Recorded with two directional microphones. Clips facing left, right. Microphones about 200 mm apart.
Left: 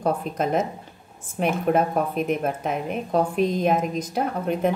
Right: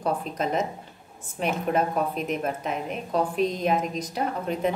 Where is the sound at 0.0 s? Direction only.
50° left (ahead or behind).